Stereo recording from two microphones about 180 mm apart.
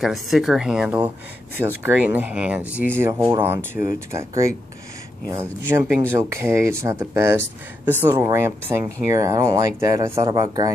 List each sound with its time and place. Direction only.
0.0 s speech: centre (ahead or behind); by 10.7 s 20° right (ahead or behind)